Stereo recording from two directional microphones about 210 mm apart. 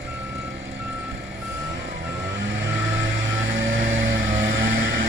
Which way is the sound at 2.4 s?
60° right (ahead or behind).